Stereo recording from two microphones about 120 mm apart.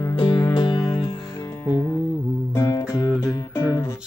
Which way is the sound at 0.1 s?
40° left (ahead or behind).